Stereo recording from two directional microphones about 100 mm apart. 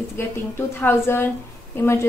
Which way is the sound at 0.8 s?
25° left (ahead or behind).